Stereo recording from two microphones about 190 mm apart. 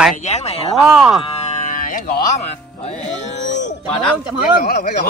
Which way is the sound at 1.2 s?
35° left (ahead or behind).